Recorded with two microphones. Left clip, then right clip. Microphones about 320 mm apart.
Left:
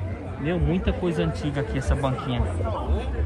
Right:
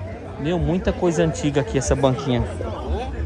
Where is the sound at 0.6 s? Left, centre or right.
Right.